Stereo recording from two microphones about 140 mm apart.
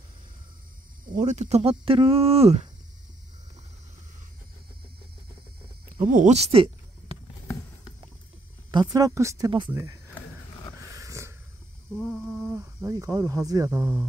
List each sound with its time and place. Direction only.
1.0 s speech: 65° right (ahead or behind); by 2.6 s 45° right (ahead or behind)
5.9 s a sound: 70° right (ahead or behind); by 7.2 s 40° right (ahead or behind)
8.7 s speech: 25° right (ahead or behind)
10.9 s snort: 20° right (ahead or behind)
11.9 s a sound: 5° left (ahead or behind)
12.9 s speech: 25° right (ahead or behind)